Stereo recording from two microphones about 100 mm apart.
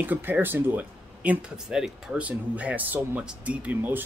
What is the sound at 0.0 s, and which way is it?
Speech, 20° right (ahead or behind).